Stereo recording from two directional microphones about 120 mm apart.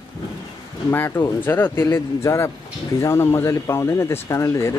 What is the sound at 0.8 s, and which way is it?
Speech, 20° left (ahead or behind).